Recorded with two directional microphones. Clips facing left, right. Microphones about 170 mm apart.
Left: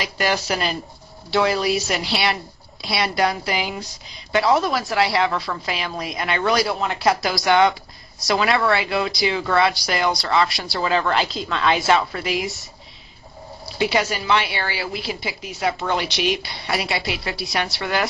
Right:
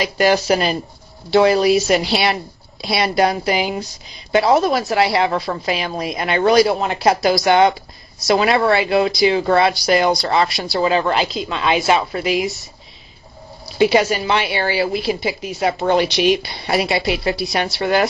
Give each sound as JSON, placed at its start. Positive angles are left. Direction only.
{"t": 0.0, "sound": "a woman's voice", "side_deg": -20}
{"t": 13.7, "sound": "a woman's voice", "side_deg": -20}